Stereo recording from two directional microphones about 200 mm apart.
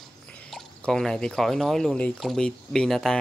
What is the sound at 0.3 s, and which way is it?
Speech, 5° left (ahead or behind).